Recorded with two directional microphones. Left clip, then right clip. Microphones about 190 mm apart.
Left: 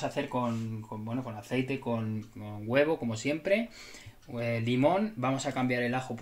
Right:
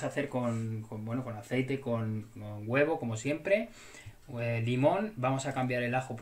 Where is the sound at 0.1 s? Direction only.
15° left (ahead or behind).